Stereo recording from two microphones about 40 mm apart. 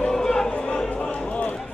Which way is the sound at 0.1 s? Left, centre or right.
Centre.